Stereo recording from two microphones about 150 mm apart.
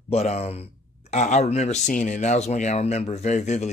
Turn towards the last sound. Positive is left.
turn(degrees=50)  # may be behind; listen again after turning